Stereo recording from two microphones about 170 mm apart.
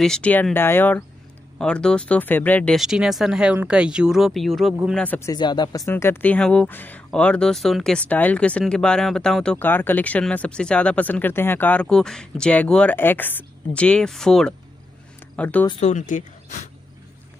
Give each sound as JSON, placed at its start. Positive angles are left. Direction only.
{"t": 0.0, "sound": "speech", "side_deg": 5}
{"t": 5.3, "sound": "speech", "side_deg": 25}
{"t": 15.8, "sound": "speech", "side_deg": 45}